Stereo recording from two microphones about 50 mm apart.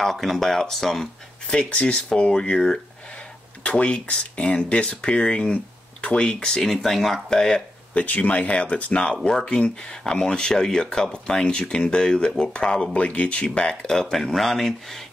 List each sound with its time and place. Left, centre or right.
0.0 s speech: centre
1.5 s speech: centre
6.4 s speech: centre
7.9 s speech: left
12.9 s speech: left; by 15.0 s centre